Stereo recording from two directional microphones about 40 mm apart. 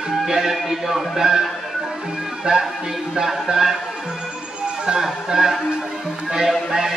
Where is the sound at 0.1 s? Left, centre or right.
Centre.